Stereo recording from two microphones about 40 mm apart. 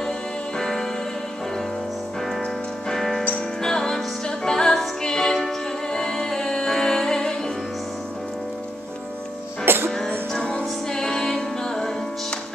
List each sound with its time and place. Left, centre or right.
0.6 s music: centre
2.9 s music: centre
9.8 s music: centre